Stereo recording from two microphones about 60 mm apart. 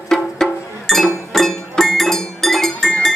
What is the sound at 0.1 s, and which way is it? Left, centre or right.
Music, centre.